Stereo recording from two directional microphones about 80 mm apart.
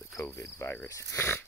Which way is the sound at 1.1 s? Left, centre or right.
Left.